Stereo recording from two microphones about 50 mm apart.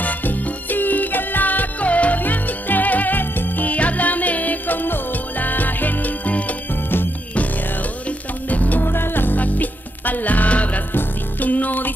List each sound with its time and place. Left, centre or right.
0.0 s music: left
8.5 s music: left
8.8 s music: left